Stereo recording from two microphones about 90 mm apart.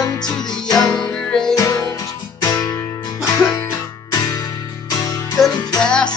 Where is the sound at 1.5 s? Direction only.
35° left (ahead or behind).